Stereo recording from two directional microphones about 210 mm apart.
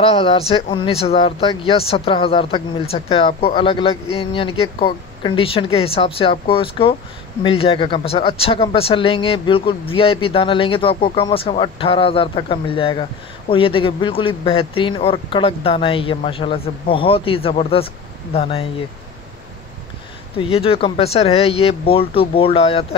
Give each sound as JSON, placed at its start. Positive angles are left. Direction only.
{"t": 0.0, "sound": "speech", "side_deg": 25}
{"t": 20.3, "sound": "speech", "side_deg": 25}